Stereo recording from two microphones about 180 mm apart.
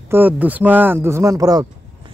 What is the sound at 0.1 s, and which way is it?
Speech, 10° right (ahead or behind).